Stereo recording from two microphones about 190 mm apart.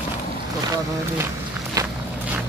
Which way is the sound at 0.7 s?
15° right (ahead or behind).